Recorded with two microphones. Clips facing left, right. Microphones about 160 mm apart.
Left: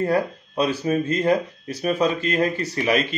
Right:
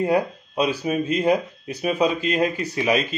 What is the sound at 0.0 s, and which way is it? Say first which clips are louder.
Speech: right 1 dB; 15° right (ahead or behind).